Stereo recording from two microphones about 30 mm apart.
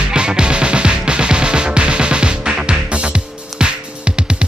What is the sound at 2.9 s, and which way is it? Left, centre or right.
Music, right.